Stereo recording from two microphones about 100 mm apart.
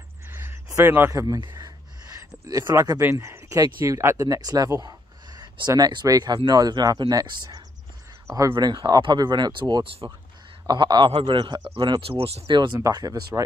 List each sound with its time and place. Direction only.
0.3 s a sound: 25° right (ahead or behind)
1.1 s speech: 35° right (ahead or behind)
1.4 s a sound: 40° right (ahead or behind)
3.2 s speech: 30° right (ahead or behind)
8.7 s speech: 50° right (ahead or behind)
11.1 s speech: 60° right (ahead or behind)
12.0 s speech: 70° right (ahead or behind); by 12.7 s 50° right (ahead or behind)
12.8 s speech: 40° right (ahead or behind)